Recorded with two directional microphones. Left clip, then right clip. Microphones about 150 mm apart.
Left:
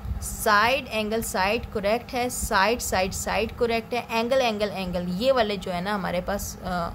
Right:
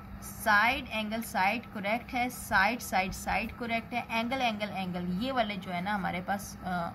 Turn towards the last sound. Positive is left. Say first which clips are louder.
# left 6 dB
turn(degrees=60)  # may be behind; listen again after turning